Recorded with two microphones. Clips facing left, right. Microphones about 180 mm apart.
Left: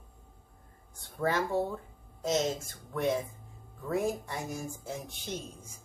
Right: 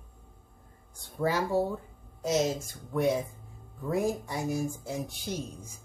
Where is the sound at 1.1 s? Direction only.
10° right (ahead or behind).